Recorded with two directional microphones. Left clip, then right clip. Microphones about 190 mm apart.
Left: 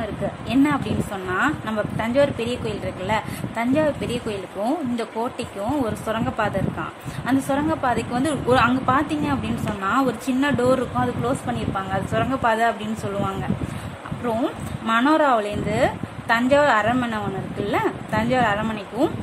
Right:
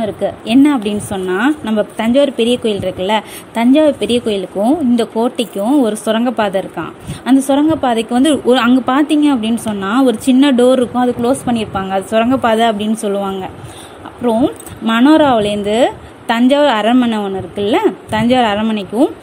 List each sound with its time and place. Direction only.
0.5 s a woman's voice: 35° right (ahead or behind)
14.2 s a woman's voice: 30° right (ahead or behind)